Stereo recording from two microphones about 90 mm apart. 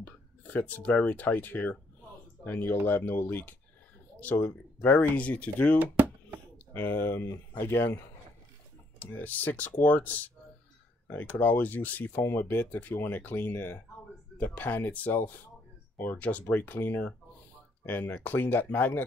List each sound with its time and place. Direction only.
0.0 s speech: 15° left (ahead or behind)
9.0 s speech: 20° left (ahead or behind)